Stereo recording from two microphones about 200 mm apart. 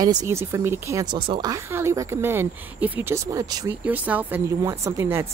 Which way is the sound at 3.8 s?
10° right (ahead or behind).